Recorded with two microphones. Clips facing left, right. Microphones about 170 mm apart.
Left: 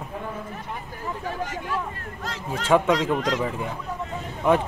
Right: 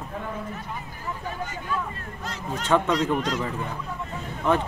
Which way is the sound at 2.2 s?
90° left.